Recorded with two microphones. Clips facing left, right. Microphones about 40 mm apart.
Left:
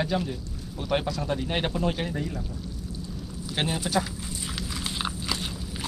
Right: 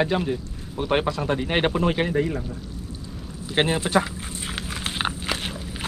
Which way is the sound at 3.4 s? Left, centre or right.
Right.